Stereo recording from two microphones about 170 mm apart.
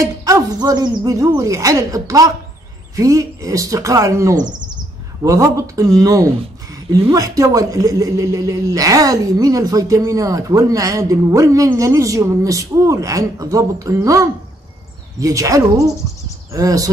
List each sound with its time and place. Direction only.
0.0 s speech: 20° right (ahead or behind)
4.5 s bird: 25° right (ahead or behind)
5.2 s speech: 20° right (ahead or behind)